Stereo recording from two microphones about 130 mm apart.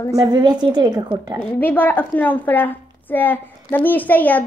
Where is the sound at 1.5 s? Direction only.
15° left (ahead or behind).